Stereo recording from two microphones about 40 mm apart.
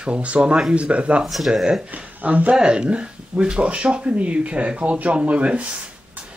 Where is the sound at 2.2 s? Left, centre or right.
Right.